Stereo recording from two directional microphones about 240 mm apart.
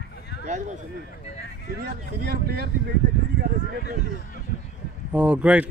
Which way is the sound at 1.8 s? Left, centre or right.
Right.